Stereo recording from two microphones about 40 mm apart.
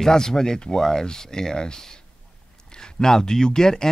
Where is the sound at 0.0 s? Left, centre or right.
Centre.